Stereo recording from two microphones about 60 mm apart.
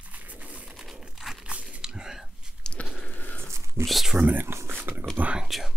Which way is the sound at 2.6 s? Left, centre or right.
Centre.